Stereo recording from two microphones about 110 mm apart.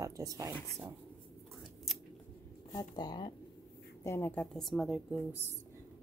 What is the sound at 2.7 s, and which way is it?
Speech, 40° left (ahead or behind).